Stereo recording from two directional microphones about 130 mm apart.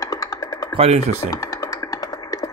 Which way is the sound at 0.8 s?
55° right (ahead or behind).